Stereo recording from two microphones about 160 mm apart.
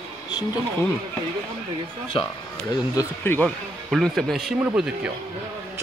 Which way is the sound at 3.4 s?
Centre (ahead or behind).